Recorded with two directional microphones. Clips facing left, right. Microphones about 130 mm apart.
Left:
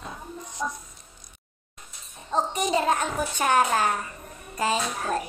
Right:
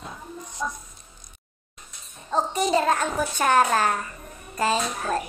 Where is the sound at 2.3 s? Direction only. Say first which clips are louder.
Right 2 dB; 15° left (ahead or behind).